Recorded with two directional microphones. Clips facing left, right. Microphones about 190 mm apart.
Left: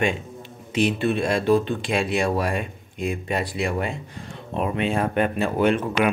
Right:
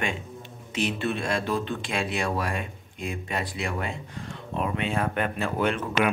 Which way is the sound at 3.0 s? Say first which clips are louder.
Left 6 dB; 15° left (ahead or behind).